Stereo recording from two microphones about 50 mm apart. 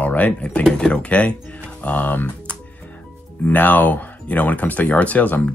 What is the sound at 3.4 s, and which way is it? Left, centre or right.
Speech, left.